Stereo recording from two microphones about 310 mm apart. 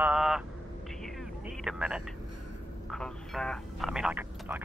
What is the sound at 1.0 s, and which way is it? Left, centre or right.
Vehicle, centre.